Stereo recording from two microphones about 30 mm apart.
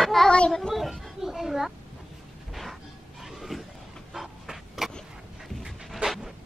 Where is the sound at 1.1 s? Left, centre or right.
Centre.